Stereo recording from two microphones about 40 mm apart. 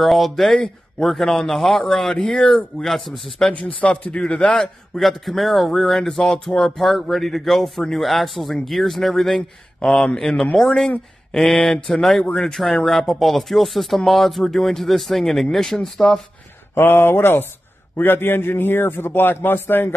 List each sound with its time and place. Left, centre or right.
0.0 s a man's voice: centre
2.2 s speech: left
2.8 s a man's voice: centre
3.5 s speech: left
4.6 s a man's voice: centre
16.7 s a man's voice: left